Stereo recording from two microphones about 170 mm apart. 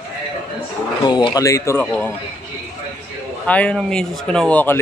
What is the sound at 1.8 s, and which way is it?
Speech, 5° left (ahead or behind).